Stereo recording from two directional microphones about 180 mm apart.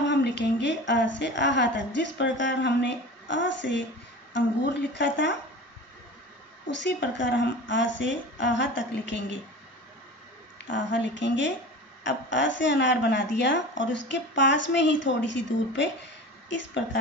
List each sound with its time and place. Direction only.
0.1 s a woman's voice: 75° left (ahead or behind); by 3.8 s 90° left
4.3 s a woman's voice: 80° left
6.7 s a woman's voice: 80° left
10.7 s speech: 90° left